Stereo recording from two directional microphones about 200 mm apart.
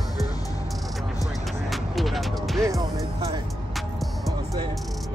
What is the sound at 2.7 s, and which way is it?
Music, 15° right (ahead or behind).